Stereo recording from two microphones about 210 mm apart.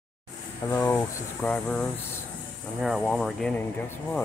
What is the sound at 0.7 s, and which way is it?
Speech, 15° left (ahead or behind).